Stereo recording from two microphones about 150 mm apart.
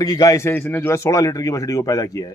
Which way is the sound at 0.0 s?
25° left (ahead or behind).